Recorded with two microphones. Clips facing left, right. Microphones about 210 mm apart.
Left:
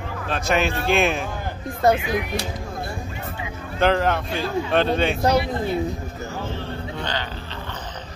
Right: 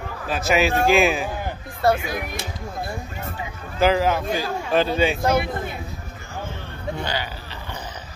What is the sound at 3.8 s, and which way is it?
Speech, 5° right (ahead or behind).